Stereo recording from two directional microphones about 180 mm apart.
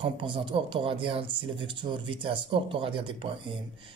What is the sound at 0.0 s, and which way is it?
Speech, 30° right (ahead or behind).